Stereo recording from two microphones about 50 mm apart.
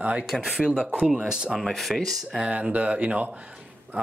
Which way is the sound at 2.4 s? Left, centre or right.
Right.